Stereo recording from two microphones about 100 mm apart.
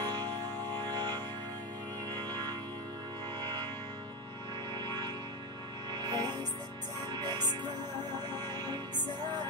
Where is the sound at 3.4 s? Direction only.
50° right (ahead or behind).